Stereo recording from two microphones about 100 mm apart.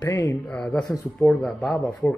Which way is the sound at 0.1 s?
30° left (ahead or behind).